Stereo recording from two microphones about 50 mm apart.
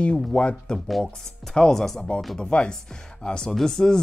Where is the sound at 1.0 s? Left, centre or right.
Centre.